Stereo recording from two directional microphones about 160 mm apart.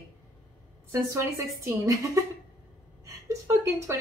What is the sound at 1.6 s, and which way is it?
Speech, 20° right (ahead or behind).